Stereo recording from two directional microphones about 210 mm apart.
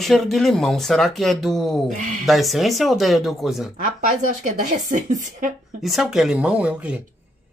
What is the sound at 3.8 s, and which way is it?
A woman's voice, 40° right (ahead or behind).